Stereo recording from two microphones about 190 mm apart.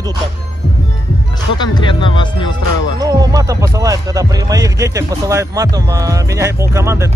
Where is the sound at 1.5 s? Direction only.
25° left (ahead or behind).